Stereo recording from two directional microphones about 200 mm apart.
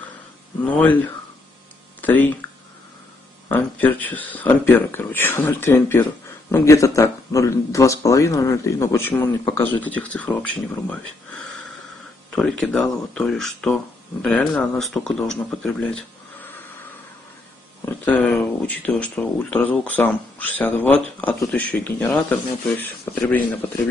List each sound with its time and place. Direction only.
0.7 s speech: 10° left (ahead or behind)
2.0 s speech: 10° left (ahead or behind)
3.4 s speech: 10° left (ahead or behind)
17.8 s speech: 5° left (ahead or behind)